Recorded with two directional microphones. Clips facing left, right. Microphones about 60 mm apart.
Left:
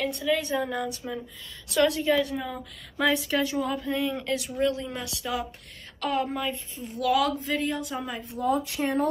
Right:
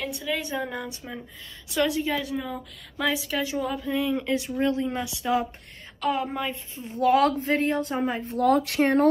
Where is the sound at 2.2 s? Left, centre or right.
Centre.